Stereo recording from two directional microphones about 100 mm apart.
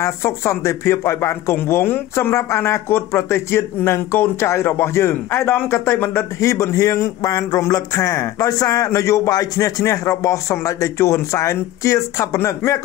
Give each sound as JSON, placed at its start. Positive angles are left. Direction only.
{"t": 0.0, "sound": "speech", "side_deg": 30}